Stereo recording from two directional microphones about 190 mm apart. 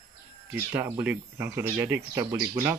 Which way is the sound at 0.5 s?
10° right (ahead or behind).